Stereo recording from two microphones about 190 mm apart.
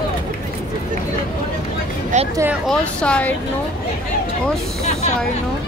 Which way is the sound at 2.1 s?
40° right (ahead or behind).